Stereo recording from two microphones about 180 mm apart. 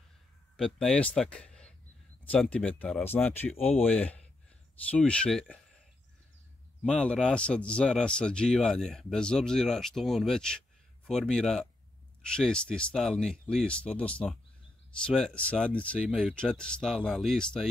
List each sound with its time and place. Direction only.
0.6 s speech: 5° left (ahead or behind)
6.8 s speech: 5° left (ahead or behind)
16.0 s speech: 5° right (ahead or behind)